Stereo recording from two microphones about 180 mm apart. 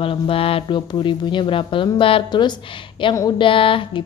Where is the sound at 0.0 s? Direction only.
30° left (ahead or behind).